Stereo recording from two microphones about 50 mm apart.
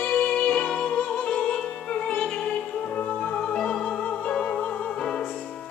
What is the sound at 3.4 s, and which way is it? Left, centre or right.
Music, centre.